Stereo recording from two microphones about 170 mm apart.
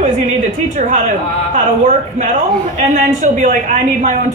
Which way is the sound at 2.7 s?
45° right (ahead or behind).